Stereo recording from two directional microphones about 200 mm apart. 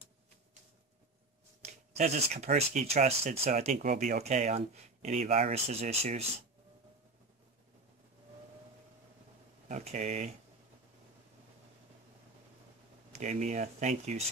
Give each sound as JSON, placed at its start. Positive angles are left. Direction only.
{"t": 1.7, "sound": "speech", "side_deg": -35}
{"t": 3.9, "sound": "speech", "side_deg": -45}
{"t": 4.2, "sound": "speech", "side_deg": -35}
{"t": 9.7, "sound": "speech", "side_deg": -35}
{"t": 13.1, "sound": "speech", "side_deg": -35}